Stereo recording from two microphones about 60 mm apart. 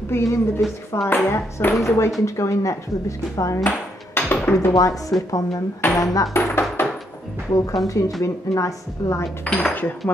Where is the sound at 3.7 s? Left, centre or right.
Left.